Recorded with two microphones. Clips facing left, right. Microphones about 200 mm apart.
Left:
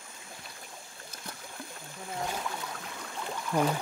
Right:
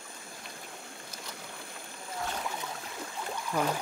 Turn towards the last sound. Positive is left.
turn(degrees=0)  # may be behind; listen again after turning